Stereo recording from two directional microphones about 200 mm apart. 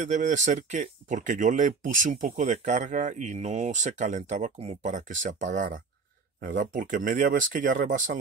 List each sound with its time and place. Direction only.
0.0 s speech: 35° right (ahead or behind)